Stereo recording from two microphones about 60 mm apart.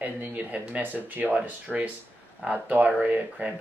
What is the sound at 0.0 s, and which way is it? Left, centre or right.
Speech, right.